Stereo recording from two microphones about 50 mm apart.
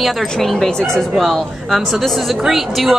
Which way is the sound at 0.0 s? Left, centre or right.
Centre.